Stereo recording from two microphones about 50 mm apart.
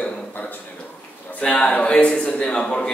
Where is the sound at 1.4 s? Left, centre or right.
Left.